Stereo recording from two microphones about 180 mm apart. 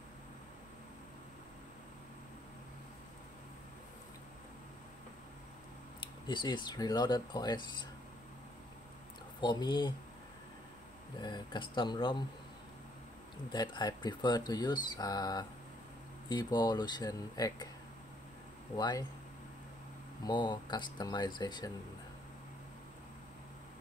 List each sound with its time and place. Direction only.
5.9 s speech: 25° left (ahead or behind)
9.4 s speech: 25° left (ahead or behind)
11.1 s speech: 25° left (ahead or behind)
13.5 s speech: 25° left (ahead or behind)
18.8 s speech: 20° left (ahead or behind)
20.2 s speech: 25° left (ahead or behind)